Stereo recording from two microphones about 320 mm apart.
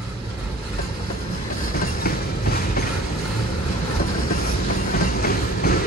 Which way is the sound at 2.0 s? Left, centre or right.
Left.